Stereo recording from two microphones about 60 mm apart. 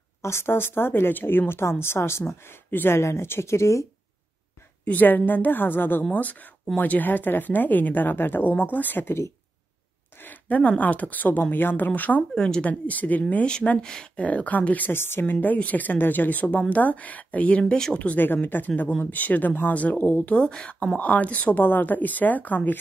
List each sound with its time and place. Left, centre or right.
0.2 s a woman's voice: left
3.0 s speech: left
4.8 s a woman's voice: left
10.2 s speech: left
12.2 s speech: centre
12.6 s speech: left
13.5 s speech: centre
14.2 s speech: left
15.0 s a woman's voice: left
15.4 s speech: left
18.2 s a woman's voice: left
20.3 s speech: centre